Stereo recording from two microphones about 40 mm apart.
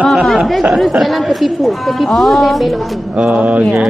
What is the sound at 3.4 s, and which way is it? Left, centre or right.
Mantra, right.